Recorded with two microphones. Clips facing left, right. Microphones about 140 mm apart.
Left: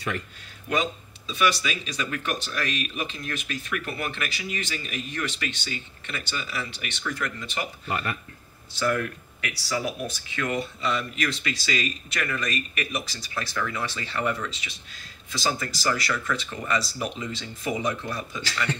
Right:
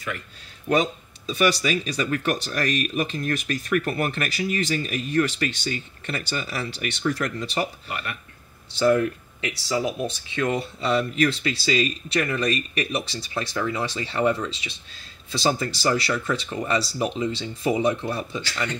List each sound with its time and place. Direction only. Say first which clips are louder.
0.7 s speech: right 5 dB; 35° right (ahead or behind)
7.9 s speech: left 3 dB; 35° left (ahead or behind)
8.7 s speech: right 7 dB; 25° right (ahead or behind)